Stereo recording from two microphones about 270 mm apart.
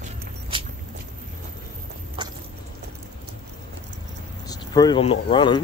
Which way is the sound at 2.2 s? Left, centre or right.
Centre.